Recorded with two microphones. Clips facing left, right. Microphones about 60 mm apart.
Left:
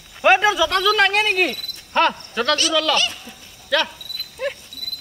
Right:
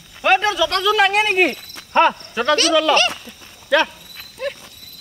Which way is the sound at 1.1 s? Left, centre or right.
Right.